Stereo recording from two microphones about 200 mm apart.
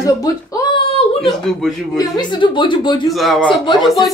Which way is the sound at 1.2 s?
Centre (ahead or behind).